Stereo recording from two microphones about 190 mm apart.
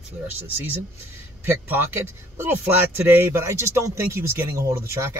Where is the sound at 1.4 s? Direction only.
15° right (ahead or behind).